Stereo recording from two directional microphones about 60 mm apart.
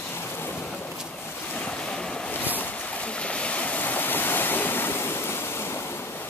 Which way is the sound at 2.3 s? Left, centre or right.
Left.